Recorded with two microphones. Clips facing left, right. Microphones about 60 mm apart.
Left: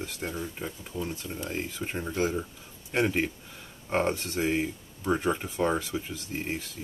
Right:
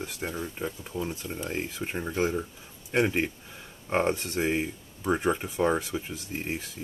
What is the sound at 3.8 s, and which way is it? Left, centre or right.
Speech, centre.